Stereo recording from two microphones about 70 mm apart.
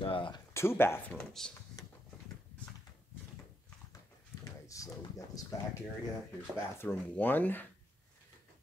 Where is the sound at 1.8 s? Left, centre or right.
Left.